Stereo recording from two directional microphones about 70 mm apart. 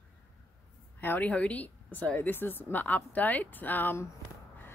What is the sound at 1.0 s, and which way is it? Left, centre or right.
Speech, left.